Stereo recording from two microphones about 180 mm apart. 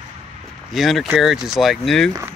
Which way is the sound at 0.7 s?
Centre (ahead or behind).